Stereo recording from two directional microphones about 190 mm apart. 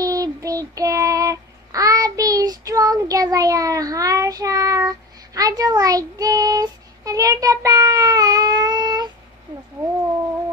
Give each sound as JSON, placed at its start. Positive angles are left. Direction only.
{"t": 0.0, "sound": "child singing", "side_deg": -15}